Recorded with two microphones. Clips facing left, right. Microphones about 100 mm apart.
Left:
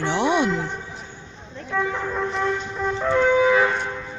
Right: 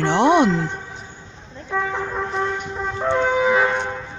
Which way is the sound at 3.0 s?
25° right (ahead or behind).